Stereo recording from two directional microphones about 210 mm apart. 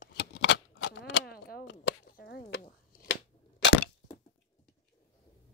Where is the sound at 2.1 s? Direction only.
50° left (ahead or behind).